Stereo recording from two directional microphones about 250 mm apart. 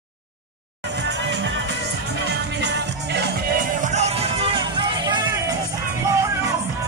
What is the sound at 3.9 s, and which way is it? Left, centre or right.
Music, right.